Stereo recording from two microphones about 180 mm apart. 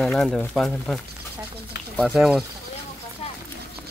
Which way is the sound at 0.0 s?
5° left (ahead or behind).